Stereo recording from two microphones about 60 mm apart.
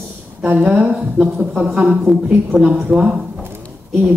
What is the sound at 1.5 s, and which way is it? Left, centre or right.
Speech, right.